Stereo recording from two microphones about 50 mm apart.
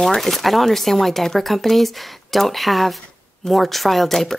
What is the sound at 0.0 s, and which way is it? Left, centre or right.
Speech, centre.